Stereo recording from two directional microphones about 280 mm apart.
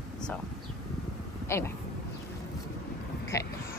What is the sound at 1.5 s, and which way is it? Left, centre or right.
Speech, centre.